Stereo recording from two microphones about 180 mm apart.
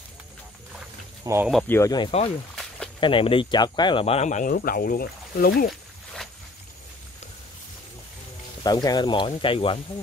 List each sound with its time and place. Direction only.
1.2 s speech: 15° right (ahead or behind)
1.7 s speech: 20° left (ahead or behind); by 4.6 s 45° left (ahead or behind)
4.6 s speech: 55° left (ahead or behind)
8.6 s speech: 20° left (ahead or behind)